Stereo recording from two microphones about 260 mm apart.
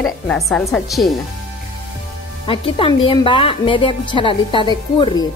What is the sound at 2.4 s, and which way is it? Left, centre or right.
Speech, centre.